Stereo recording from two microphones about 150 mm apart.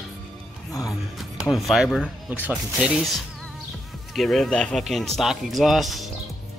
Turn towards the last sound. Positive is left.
turn(degrees=0)  # may be behind; listen again after turning